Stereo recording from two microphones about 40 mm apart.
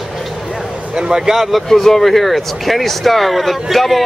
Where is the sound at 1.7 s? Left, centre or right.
Centre.